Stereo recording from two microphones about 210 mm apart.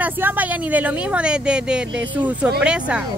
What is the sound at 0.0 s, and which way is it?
Speech, 10° right (ahead or behind).